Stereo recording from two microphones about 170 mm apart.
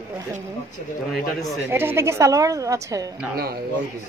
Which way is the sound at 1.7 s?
15° right (ahead or behind).